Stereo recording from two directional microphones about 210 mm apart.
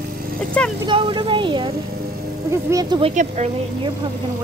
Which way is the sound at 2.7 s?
20° right (ahead or behind).